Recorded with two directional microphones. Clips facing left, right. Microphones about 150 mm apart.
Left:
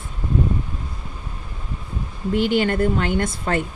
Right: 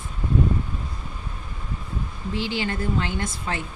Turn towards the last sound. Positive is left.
turn(degrees=55)  # may be behind; listen again after turning